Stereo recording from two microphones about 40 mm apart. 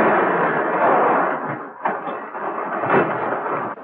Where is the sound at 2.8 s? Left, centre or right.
Centre.